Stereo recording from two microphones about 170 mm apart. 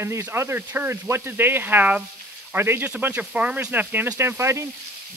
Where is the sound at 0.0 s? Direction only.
15° right (ahead or behind).